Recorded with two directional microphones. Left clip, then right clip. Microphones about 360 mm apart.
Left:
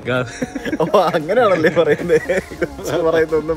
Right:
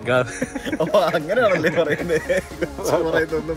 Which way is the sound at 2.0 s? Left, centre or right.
Centre.